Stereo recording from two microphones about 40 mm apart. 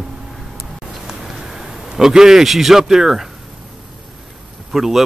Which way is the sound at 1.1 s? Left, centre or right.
Centre.